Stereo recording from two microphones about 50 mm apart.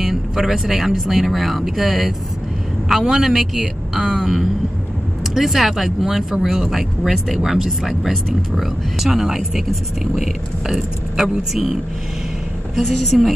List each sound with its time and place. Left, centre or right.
0.0 s speech: centre